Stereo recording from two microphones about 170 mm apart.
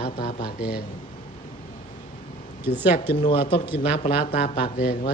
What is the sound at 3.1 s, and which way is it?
Speech, 35° left (ahead or behind).